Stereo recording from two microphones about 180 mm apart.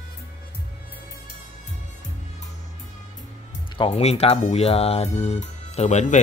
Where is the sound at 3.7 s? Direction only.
30° left (ahead or behind).